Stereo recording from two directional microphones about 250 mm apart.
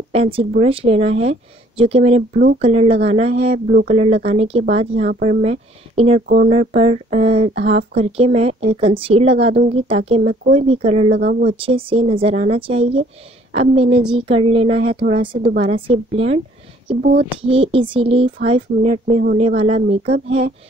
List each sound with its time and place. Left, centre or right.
0.1 s speech: right
6.2 s speech: right
6.5 s speech: right
17.4 s speech: right